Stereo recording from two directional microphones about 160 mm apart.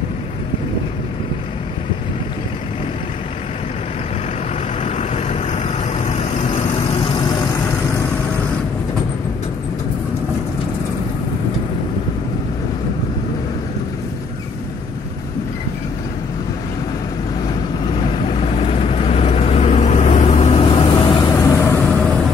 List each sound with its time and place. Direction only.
4.8 s vehicle: 45° left (ahead or behind)
18.2 s vehicle: 40° left (ahead or behind); by 21.8 s 15° left (ahead or behind)